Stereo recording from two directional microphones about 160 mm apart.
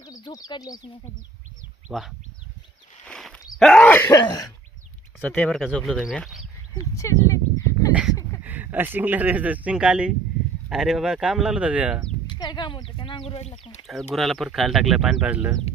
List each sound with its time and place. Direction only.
0.0 s speech: 20° left (ahead or behind)
1.9 s speech: 5° right (ahead or behind)
3.1 s a sound: 5° left (ahead or behind)
3.5 s groan: 5° left (ahead or behind); by 4.5 s 25° left (ahead or behind)
5.2 s speech: centre (ahead or behind)
6.7 s dog: 20° left (ahead or behind)
8.5 s speech: 10° right (ahead or behind)
12.3 s a sound: 25° left (ahead or behind); by 13.7 s 45° left (ahead or behind)
13.8 s speech: centre (ahead or behind)